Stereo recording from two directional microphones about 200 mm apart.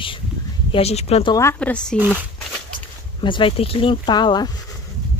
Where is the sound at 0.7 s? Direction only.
30° left (ahead or behind).